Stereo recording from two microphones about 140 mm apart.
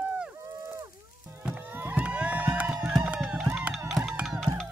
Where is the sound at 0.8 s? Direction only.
20° right (ahead or behind).